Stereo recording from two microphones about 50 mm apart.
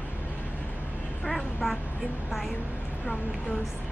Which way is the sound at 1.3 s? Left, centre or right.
Centre.